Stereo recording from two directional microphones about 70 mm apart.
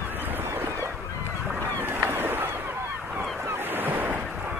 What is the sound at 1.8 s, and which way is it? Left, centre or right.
Goose, right.